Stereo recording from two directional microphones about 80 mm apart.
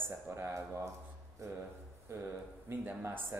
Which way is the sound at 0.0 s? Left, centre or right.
Right.